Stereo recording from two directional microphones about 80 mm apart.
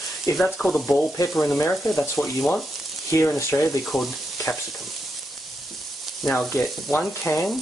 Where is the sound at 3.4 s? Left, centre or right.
Left.